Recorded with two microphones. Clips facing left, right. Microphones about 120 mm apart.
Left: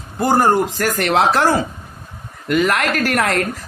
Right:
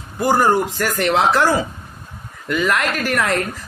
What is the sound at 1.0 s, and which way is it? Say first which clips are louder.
Speech: even; 55° left (ahead or behind).